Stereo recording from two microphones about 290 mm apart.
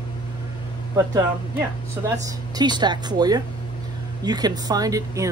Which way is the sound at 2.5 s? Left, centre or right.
Centre.